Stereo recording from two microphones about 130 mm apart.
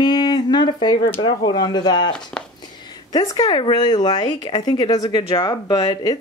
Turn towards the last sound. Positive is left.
turn(degrees=35)  # may be behind; listen again after turning